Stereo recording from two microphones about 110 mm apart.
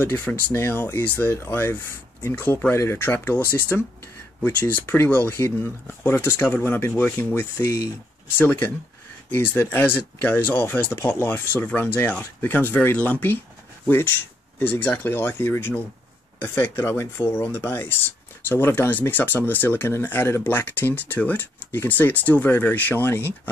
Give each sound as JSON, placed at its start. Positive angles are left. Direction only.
{"t": 0.0, "sound": "speech", "side_deg": 15}